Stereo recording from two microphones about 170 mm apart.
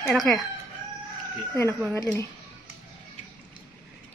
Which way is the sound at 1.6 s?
10° right (ahead or behind).